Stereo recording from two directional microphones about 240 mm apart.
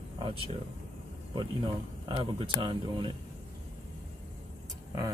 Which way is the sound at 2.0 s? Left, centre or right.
Right.